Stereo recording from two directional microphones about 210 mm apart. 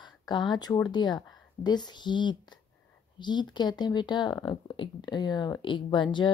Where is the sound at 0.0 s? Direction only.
20° left (ahead or behind).